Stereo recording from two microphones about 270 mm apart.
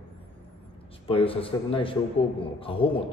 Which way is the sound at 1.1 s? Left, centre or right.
Centre.